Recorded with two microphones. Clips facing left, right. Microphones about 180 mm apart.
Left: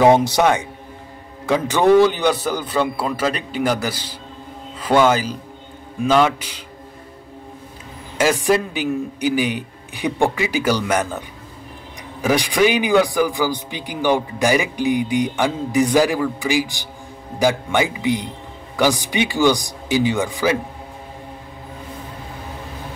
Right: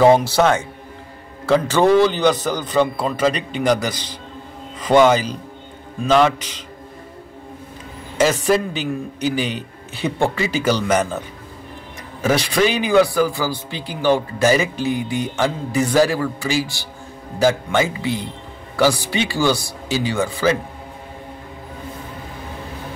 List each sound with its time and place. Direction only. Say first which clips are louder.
0.0 s speech: even; 20° left (ahead or behind)
8.2 s speech: right 1 dB; 10° left (ahead or behind)